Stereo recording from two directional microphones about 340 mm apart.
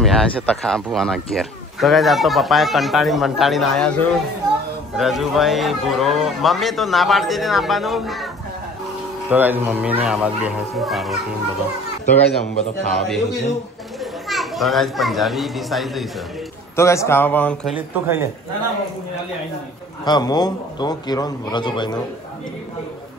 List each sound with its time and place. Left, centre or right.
0.0 s a man's voice: centre
9.3 s a man's voice: centre
12.8 s a man's voice: centre
20.1 s a man's voice: centre